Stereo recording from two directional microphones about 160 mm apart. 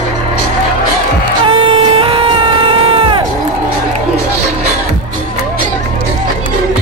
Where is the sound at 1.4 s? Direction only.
35° right (ahead or behind).